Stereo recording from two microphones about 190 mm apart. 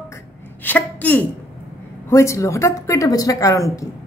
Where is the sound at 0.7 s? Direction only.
10° left (ahead or behind).